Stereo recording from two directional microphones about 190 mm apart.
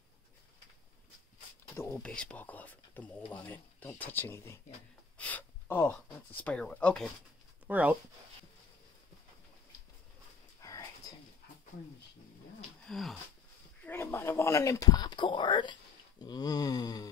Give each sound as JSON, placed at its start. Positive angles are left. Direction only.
{"t": 1.8, "sound": "speech", "side_deg": 10}
{"t": 7.6, "sound": "speech", "side_deg": -10}
{"t": 10.6, "sound": "a sound", "side_deg": 15}
{"t": 12.8, "sound": "speech", "side_deg": 0}
{"t": 13.8, "sound": "speech", "side_deg": 10}